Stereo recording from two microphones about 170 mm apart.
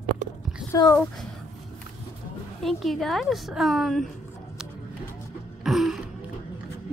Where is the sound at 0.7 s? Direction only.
20° left (ahead or behind).